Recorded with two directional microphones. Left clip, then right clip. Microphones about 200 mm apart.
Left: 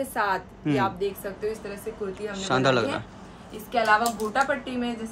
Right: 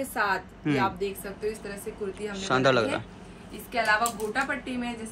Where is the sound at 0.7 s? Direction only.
15° left (ahead or behind).